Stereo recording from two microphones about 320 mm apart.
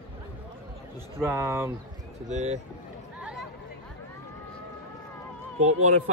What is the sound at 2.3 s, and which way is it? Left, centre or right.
Speech, right.